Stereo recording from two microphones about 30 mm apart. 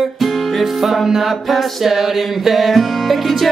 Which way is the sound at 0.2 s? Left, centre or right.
Centre.